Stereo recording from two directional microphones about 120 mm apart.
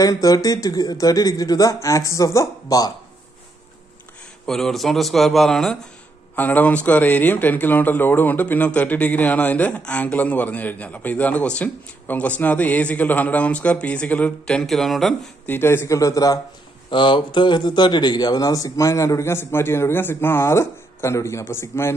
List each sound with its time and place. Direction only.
0.0 s speech: 30° left (ahead or behind)
4.5 s a man's voice: 5° left (ahead or behind)
6.3 s a man's voice: 15° left (ahead or behind)
15.4 s speech: 20° left (ahead or behind)
16.9 s speech: 40° left (ahead or behind); by 21.9 s 20° left (ahead or behind)